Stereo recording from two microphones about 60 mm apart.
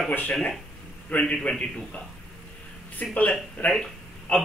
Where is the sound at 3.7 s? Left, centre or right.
Centre.